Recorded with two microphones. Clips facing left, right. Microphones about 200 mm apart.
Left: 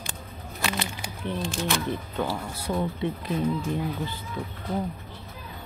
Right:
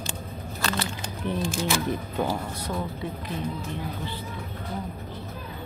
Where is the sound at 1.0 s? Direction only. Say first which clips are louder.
Right 2 dB; centre (ahead or behind).